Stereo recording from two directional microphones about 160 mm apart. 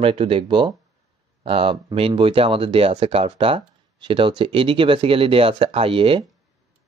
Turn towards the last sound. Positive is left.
turn(degrees=-35)  # may be behind; listen again after turning